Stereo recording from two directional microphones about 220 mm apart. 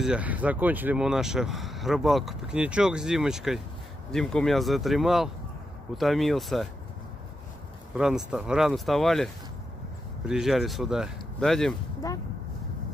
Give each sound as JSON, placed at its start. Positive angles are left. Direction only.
{"t": 0.0, "sound": "speech", "side_deg": -5}
{"t": 7.9, "sound": "speech", "side_deg": 0}
{"t": 12.0, "sound": "speech", "side_deg": 15}